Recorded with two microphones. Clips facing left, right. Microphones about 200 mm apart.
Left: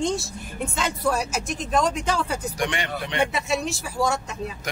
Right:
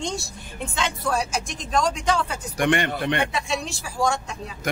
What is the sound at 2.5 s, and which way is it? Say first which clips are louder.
Speech: right 5 dB; 55° right (ahead or behind).